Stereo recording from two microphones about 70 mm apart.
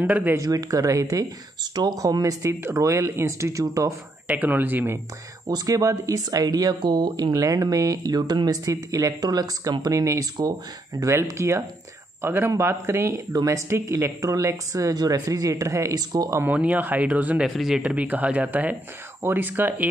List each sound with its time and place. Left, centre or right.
0.4 s speech: right
1.6 s speech: right
2.0 s a woman's voice: right
4.3 s speech: right
5.5 s speech: right
7.6 s a woman's voice: right
12.2 s a man's voice: right
13.3 s speech: right
13.6 s a woman's voice: right
16.4 s speech: right
17.4 s speech: centre
17.8 s speech: centre